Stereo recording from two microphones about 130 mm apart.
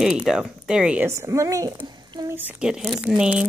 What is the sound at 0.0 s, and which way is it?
Speech, 5° right (ahead or behind).